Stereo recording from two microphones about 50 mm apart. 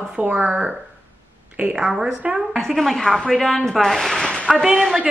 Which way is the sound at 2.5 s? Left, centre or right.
Centre.